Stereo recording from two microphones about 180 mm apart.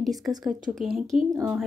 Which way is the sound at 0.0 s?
Centre (ahead or behind).